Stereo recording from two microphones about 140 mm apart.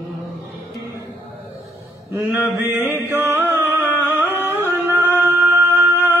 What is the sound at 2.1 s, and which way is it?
Mantra, 15° right (ahead or behind).